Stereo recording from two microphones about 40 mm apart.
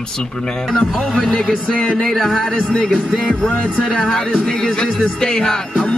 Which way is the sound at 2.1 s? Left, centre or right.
Centre.